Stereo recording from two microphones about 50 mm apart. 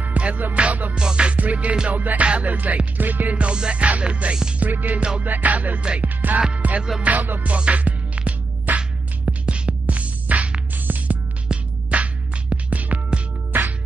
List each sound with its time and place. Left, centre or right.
0.0 s music: right
0.9 s music: centre
4.6 s music: right
7.5 s music: right